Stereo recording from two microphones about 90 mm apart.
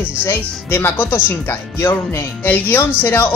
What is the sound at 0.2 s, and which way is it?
Speech, 25° left (ahead or behind).